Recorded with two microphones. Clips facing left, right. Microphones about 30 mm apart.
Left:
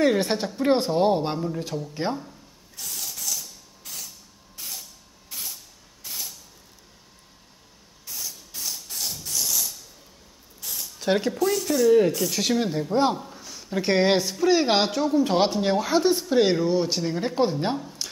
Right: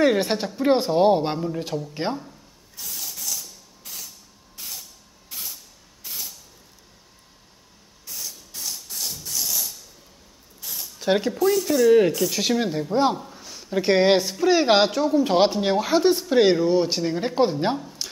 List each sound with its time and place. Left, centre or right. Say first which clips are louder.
0.0 s speech: right 2 dB; centre
2.8 s spray: even; centre
5.3 s vehicle: even; centre
6.0 s air brake: even; centre
8.1 s spray: even; centre
10.6 s speech: even; centre